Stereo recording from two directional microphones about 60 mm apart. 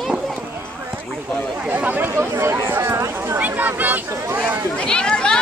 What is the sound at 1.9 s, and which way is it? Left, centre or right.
Speech, right.